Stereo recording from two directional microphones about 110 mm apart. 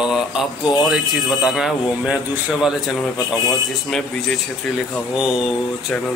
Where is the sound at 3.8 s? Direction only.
5° left (ahead or behind).